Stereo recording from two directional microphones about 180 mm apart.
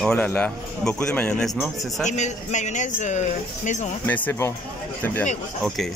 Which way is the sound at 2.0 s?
40° left (ahead or behind).